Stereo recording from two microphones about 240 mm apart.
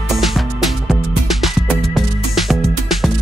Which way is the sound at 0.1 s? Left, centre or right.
Centre.